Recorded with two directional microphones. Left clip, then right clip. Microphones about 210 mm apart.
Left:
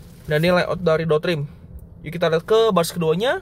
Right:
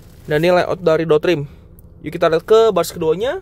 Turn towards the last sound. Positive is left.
turn(degrees=-10)  # may be behind; listen again after turning